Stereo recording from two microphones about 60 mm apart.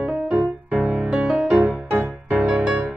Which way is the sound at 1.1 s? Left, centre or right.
Centre.